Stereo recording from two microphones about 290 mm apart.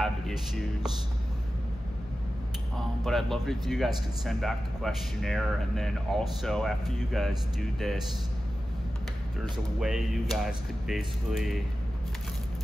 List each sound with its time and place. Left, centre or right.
3.0 s a man's voice: centre
9.4 s a man's voice: centre